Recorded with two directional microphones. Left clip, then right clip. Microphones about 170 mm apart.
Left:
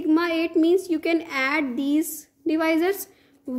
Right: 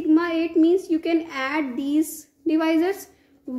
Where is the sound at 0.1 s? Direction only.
50° left (ahead or behind).